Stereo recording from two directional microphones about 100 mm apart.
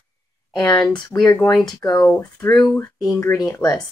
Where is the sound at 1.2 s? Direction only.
25° left (ahead or behind).